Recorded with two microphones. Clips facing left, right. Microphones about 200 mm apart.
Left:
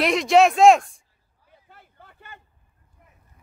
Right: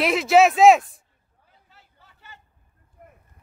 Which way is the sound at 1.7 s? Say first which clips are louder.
Left 8 dB; 55° left (ahead or behind).